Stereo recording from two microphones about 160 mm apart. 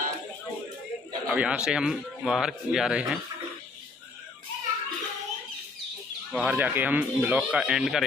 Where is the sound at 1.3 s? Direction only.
5° right (ahead or behind).